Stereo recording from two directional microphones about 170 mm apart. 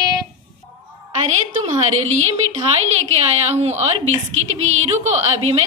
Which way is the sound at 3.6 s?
40° right (ahead or behind).